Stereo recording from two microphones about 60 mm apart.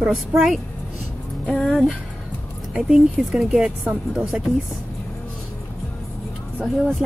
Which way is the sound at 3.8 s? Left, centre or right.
Right.